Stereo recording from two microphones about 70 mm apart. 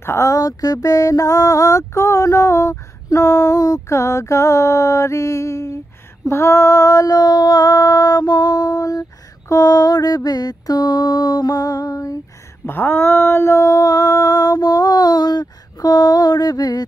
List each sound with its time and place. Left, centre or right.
0.0 s speech: left
0.3 s mantra: left
3.9 s mantra: left
6.2 s female singing: left
9.5 s mantra: left
12.6 s a sound: left